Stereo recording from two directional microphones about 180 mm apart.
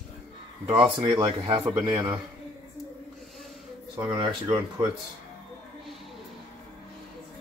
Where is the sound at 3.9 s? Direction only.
20° right (ahead or behind).